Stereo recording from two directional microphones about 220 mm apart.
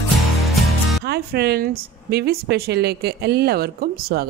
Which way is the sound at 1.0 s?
45° right (ahead or behind).